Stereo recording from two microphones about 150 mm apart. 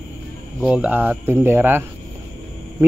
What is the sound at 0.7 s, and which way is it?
Speech, 10° right (ahead or behind).